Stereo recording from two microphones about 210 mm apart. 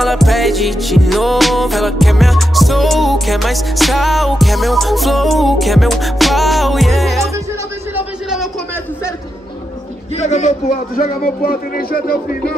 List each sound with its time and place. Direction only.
0.0 s music: centre (ahead or behind)
7.9 s a sound: 5° right (ahead or behind)
10.1 s a man's voice: 35° left (ahead or behind)